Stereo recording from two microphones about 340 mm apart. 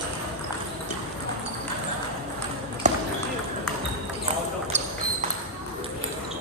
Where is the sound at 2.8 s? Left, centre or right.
Right.